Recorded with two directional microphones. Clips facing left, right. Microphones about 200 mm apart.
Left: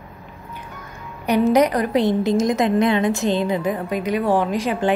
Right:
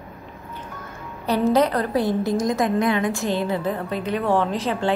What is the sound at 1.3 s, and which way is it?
A woman's voice, 15° left (ahead or behind).